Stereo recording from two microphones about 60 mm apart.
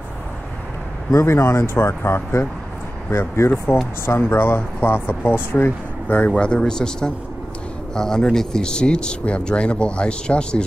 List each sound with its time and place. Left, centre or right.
1.1 s speech: left; by 10.6 s centre